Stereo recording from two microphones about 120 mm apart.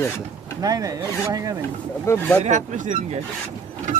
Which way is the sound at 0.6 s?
30° right (ahead or behind).